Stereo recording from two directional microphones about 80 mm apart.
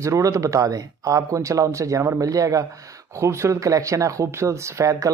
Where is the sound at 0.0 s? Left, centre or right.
Right.